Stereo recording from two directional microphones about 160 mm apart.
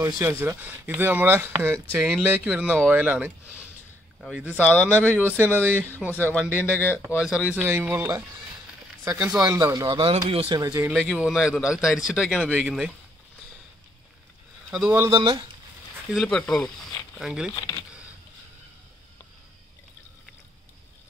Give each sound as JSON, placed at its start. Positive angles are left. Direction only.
{"t": 0.0, "sound": "speech", "side_deg": -15}
{"t": 2.0, "sound": "a man's voice", "side_deg": 0}
{"t": 4.6, "sound": "a man's voice", "side_deg": 10}
{"t": 5.6, "sound": "speech", "side_deg": -10}
{"t": 6.1, "sound": "a man's voice", "side_deg": 10}
{"t": 7.2, "sound": "a man's voice", "side_deg": -5}
{"t": 10.6, "sound": "speech", "side_deg": -20}
{"t": 10.9, "sound": "a man's voice", "side_deg": 0}
{"t": 14.7, "sound": "speech", "side_deg": -10}
{"t": 15.0, "sound": "speech", "side_deg": -30}
{"t": 16.1, "sound": "speech", "side_deg": 0}
{"t": 17.6, "sound": "speech", "side_deg": 20}